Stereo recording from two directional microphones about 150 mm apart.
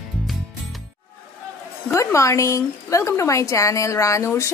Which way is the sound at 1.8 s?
20° left (ahead or behind).